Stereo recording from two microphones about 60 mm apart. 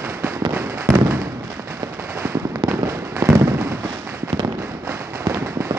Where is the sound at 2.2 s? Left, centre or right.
Right.